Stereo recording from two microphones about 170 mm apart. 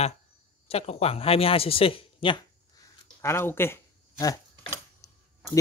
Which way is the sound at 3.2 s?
15° left (ahead or behind).